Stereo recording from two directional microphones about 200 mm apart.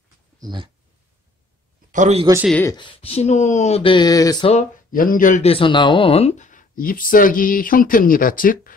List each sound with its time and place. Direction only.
0.4 s speech: 20° right (ahead or behind)
1.9 s a man's voice: 35° right (ahead or behind)
2.6 s speech: 20° left (ahead or behind)
4.5 s speech: 40° left (ahead or behind)